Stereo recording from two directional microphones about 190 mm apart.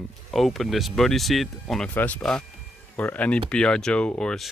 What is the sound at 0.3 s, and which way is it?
Speech, centre (ahead or behind).